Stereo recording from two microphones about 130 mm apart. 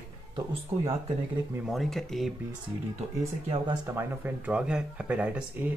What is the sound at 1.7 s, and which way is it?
Speech, centre (ahead or behind).